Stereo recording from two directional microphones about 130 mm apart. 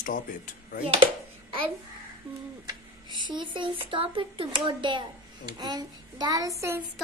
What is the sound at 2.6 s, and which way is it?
A child's voice, 35° right (ahead or behind).